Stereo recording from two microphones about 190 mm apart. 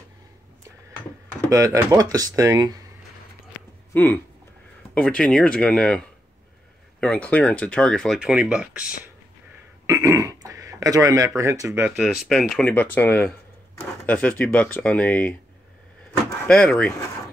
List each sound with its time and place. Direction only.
1.5 s speech: 15° right (ahead or behind)
3.9 s speech: 10° left (ahead or behind); by 8.9 s 5° right (ahead or behind)
9.8 s speech: 15° right (ahead or behind)
12.3 s speech: centre (ahead or behind)
16.1 s door: 5° left (ahead or behind)